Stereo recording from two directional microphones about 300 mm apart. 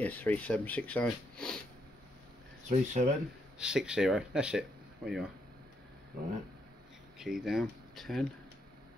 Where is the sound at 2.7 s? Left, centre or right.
Right.